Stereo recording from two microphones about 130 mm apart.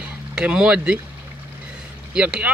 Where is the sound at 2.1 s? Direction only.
10° right (ahead or behind).